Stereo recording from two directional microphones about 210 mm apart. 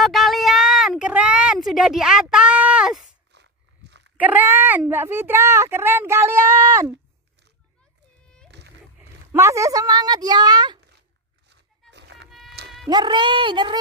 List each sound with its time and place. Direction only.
0.0 s a sound: centre (ahead or behind)
3.3 s a sound: 55° right (ahead or behind)
4.2 s a child's voice: 10° right (ahead or behind)
8.5 s splash: 55° right (ahead or behind)
9.3 s a woman's voice: 15° right (ahead or behind)
11.9 s music: 55° right (ahead or behind)
12.6 s cat: 50° right (ahead or behind)
12.9 s a woman's voice: 20° right (ahead or behind)